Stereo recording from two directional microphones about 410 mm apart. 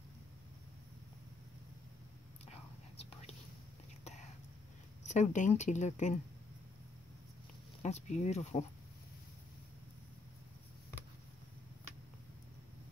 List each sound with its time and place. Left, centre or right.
3.0 s whispering: centre
5.0 s speech: centre
7.8 s speech: centre